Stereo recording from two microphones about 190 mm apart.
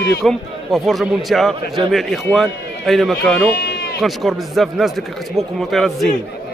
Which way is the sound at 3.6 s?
55° left (ahead or behind).